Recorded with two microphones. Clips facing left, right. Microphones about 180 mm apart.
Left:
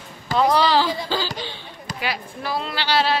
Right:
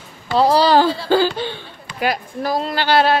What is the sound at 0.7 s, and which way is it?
Speech, 50° right (ahead or behind).